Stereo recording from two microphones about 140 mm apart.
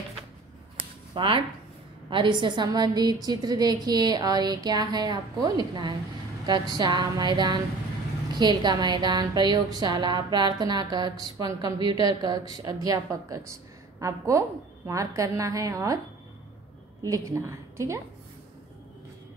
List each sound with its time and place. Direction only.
0.7 s a sound: 35° right (ahead or behind)
2.0 s a woman's voice: 35° right (ahead or behind)
17.0 s a woman's voice: 25° right (ahead or behind)